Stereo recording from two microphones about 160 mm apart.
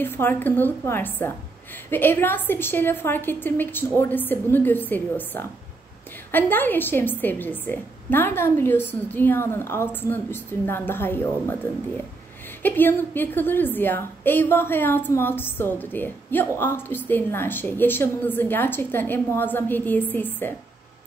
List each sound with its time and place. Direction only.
0.0 s a woman's voice: 15° left (ahead or behind)